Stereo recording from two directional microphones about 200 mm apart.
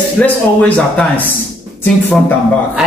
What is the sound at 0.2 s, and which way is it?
A man's voice, 5° left (ahead or behind).